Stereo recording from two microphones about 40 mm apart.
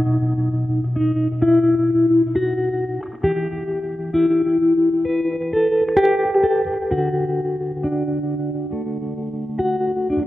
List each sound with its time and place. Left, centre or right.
0.9 s music: centre
4.1 s music: centre
9.6 s music: centre